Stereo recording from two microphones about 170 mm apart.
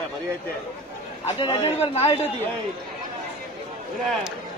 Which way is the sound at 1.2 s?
35° left (ahead or behind).